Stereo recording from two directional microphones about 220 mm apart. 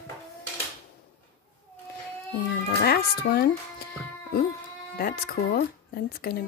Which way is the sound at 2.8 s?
45° left (ahead or behind).